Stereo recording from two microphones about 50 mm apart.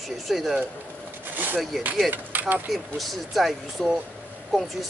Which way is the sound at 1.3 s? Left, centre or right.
Right.